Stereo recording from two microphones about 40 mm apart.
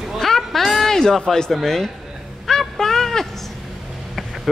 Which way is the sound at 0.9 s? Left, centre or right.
Centre.